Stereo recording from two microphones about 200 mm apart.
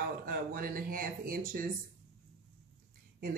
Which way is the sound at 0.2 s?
45° right (ahead or behind).